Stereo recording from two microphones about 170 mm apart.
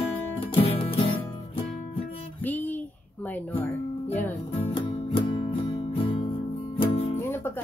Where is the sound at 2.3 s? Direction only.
10° left (ahead or behind).